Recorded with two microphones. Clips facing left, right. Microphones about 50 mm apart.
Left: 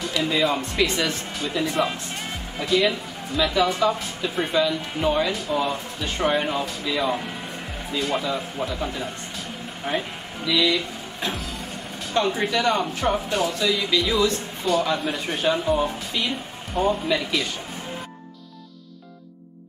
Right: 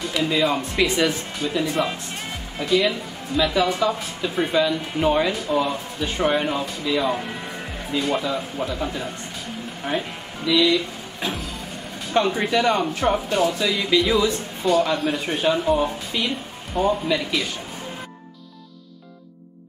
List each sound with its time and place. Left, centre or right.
0.0 s speech: centre
12.1 s speech: centre